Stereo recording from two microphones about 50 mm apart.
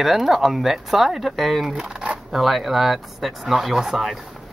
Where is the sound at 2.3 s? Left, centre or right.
Centre.